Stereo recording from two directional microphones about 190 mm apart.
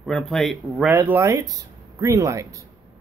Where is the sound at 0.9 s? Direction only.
15° right (ahead or behind).